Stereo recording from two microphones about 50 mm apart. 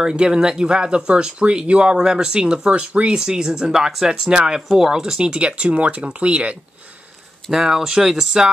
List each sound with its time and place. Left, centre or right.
0.0 s speech: centre
7.5 s speech: centre